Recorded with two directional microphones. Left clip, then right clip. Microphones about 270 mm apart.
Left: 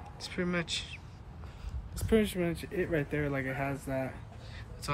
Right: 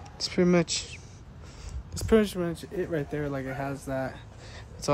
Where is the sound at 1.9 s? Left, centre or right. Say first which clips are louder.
Right 6 dB; right.